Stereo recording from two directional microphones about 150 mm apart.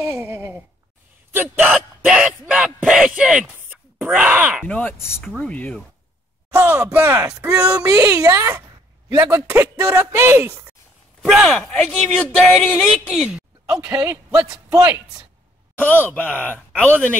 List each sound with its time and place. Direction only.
0.0 s sigh: 20° right (ahead or behind)
1.3 s a sound: 15° right (ahead or behind)
4.6 s speech: 10° left (ahead or behind)
6.5 s speech: 15° right (ahead or behind)
11.2 s speech: centre (ahead or behind)
13.7 s a man's voice: 20° right (ahead or behind)
15.8 s speech: 10° left (ahead or behind)